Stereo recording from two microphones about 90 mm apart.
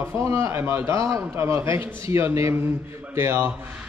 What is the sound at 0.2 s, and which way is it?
A man's voice, 30° right (ahead or behind).